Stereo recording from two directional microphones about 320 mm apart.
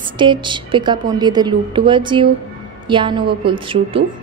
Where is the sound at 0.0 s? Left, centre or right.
Centre.